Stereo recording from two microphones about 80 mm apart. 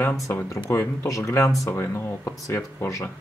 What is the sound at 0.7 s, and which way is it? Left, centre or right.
Speech, left.